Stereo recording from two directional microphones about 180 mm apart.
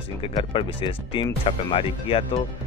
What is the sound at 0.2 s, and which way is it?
Speech, 30° left (ahead or behind).